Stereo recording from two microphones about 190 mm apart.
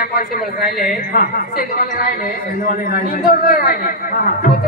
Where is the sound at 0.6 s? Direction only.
Centre (ahead or behind).